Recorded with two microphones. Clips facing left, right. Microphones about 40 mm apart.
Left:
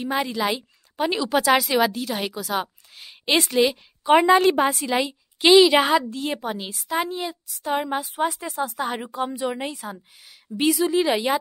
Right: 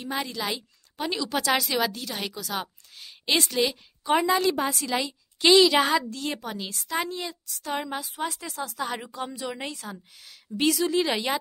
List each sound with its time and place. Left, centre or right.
0.0 s a woman's voice: left
4.2 s a woman's voice: left; by 11.3 s centre